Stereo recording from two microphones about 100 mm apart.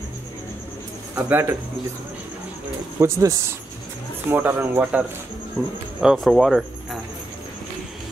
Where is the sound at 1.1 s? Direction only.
20° right (ahead or behind).